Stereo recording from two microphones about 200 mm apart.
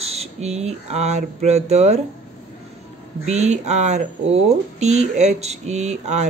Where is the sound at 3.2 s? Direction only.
35° right (ahead or behind).